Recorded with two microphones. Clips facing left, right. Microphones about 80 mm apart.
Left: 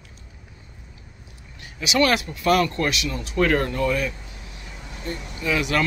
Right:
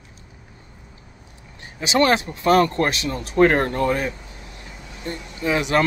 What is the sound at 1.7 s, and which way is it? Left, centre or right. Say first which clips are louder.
Speech: right 2 dB; right.